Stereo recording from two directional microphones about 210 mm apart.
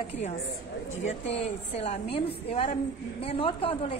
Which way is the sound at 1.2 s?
30° left (ahead or behind).